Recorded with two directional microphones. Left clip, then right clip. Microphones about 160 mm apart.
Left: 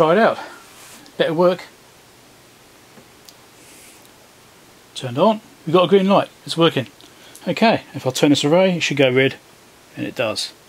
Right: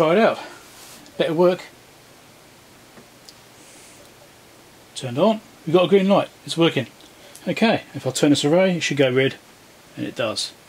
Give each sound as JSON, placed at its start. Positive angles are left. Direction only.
{"t": 0.0, "sound": "speech", "side_deg": 15}
{"t": 4.9, "sound": "speech", "side_deg": 15}